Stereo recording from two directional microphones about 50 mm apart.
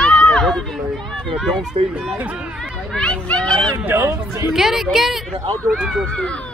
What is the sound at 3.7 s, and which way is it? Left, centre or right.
Speech, right.